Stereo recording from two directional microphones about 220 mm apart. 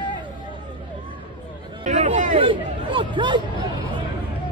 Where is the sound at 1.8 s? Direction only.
35° right (ahead or behind).